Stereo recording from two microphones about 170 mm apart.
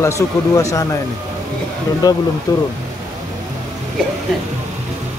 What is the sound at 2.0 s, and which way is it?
Speech, 20° left (ahead or behind).